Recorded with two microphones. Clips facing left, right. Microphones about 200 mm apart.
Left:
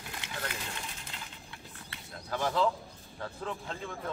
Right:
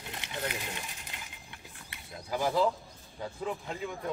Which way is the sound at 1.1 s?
15° right (ahead or behind).